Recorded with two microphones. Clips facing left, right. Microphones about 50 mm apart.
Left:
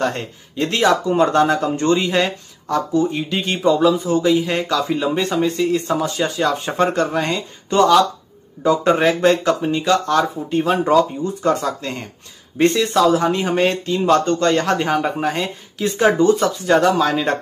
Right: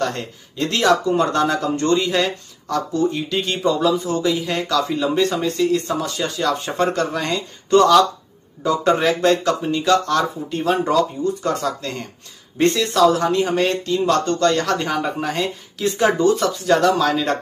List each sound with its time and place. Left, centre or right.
0.0 s speech: centre